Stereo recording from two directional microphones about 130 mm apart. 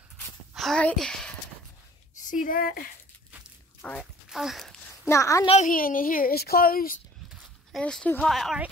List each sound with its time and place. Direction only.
0.6 s a sound: centre (ahead or behind)
0.9 s speech: 5° left (ahead or behind)
2.2 s speech: 85° left
4.0 s speech: centre (ahead or behind)
5.0 s a woman's voice: 25° left (ahead or behind)
5.6 s speech: 90° left
7.3 s speech: 5° left (ahead or behind)